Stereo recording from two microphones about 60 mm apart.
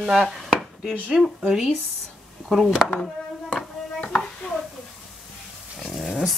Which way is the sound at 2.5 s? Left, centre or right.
Centre.